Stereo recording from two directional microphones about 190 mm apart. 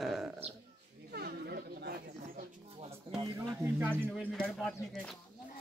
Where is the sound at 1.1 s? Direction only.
55° right (ahead or behind).